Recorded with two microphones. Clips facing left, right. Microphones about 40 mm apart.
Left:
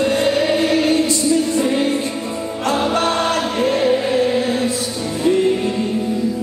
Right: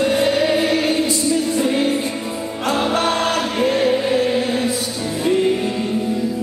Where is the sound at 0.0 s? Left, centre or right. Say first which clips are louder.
Even; centre.